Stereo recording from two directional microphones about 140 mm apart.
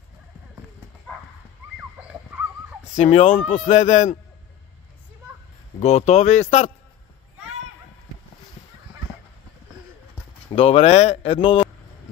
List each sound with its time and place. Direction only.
1.8 s dog: 10° right (ahead or behind)
2.9 s speech: 55° left (ahead or behind)
5.8 s speech: 50° left (ahead or behind)
10.5 s speech: 45° left (ahead or behind)